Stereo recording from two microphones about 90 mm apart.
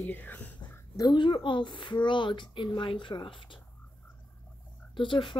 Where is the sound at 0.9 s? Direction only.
55° left (ahead or behind).